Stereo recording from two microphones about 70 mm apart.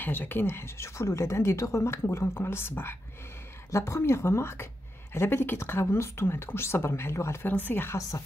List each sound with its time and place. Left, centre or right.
0.0 s speech: left
7.4 s speech: left